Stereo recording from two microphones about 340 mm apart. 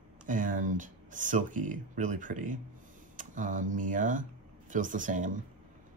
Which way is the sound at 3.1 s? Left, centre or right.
Right.